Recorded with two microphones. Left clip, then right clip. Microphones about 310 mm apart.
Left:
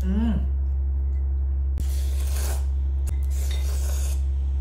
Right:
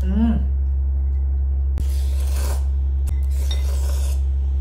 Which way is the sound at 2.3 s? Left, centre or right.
Centre.